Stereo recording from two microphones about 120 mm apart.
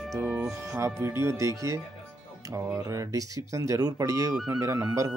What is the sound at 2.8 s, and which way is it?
Speech, 30° right (ahead or behind).